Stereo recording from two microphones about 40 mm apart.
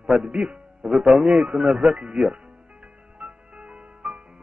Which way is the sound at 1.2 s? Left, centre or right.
Right.